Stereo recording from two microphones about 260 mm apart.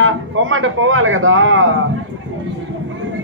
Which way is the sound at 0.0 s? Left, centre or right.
Right.